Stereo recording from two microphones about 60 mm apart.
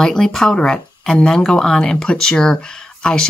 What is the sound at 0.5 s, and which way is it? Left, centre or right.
Speech, centre.